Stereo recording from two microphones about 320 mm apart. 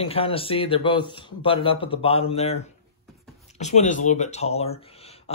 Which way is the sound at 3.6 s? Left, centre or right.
Left.